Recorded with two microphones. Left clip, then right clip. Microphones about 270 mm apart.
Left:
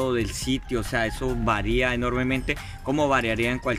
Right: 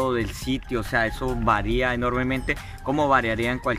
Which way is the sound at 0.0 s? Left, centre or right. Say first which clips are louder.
Right 1 dB; centre.